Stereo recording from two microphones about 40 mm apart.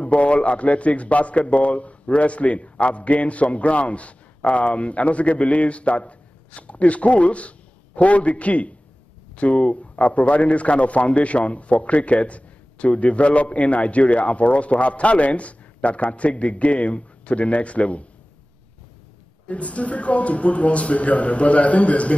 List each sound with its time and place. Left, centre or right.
0.0 s a man's voice: left
19.4 s a man's voice: left